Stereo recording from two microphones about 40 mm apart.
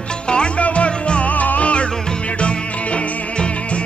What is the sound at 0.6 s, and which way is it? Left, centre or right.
Music, left.